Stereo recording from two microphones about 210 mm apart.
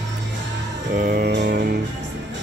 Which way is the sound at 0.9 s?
45° right (ahead or behind).